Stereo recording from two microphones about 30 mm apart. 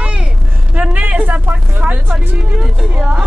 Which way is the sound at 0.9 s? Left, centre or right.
Right.